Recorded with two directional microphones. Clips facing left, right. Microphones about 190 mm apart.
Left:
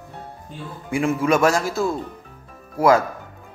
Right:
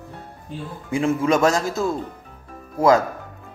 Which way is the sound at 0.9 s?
25° right (ahead or behind).